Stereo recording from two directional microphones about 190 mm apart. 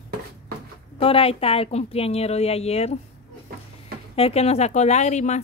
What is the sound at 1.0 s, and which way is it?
A woman's voice, 30° left (ahead or behind).